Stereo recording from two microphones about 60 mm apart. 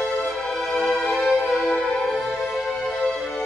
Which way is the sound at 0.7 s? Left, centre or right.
Centre.